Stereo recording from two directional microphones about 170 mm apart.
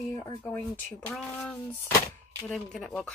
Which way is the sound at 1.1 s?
Centre (ahead or behind).